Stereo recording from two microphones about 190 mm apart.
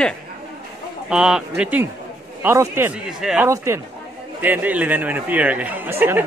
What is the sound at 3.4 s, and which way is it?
Speech, 15° right (ahead or behind).